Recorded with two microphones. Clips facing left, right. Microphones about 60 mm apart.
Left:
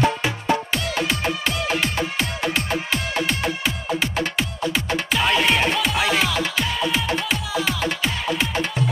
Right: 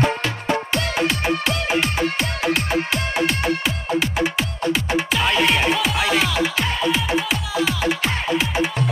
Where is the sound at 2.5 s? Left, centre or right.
Centre.